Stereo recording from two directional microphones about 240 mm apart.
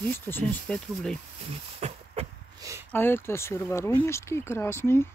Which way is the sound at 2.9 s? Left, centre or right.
Centre.